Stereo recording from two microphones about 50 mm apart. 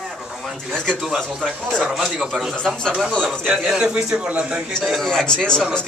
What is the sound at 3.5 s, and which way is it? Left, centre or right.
A man's voice, centre.